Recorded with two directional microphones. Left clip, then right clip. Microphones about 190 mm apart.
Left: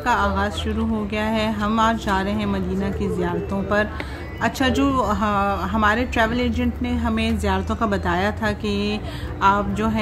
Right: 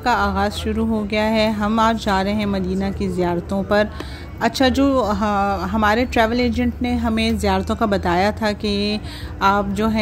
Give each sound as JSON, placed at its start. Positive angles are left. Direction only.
{"t": 0.0, "sound": "speech", "side_deg": -30}